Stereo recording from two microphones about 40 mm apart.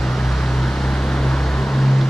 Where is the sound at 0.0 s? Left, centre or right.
Centre.